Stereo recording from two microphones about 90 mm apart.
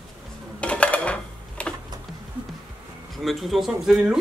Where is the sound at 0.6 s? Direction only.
15° left (ahead or behind).